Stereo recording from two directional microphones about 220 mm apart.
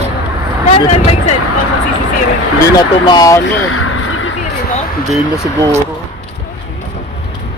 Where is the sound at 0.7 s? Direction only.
30° left (ahead or behind).